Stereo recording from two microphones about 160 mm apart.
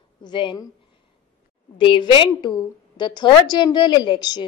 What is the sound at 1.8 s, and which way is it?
A woman's voice, 30° left (ahead or behind).